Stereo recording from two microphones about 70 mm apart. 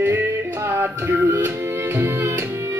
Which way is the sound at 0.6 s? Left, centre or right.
Right.